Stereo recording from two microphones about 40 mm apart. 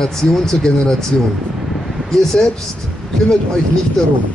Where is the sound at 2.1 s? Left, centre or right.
Centre.